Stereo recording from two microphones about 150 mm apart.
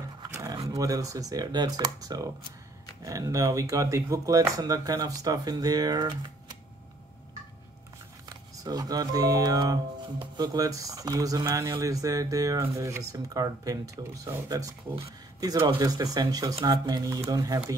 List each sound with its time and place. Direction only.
0.3 s a sound: 20° right (ahead or behind)
0.7 s speech: 25° right (ahead or behind)
8.6 s speech: 25° right (ahead or behind)
15.6 s speech: 25° right (ahead or behind)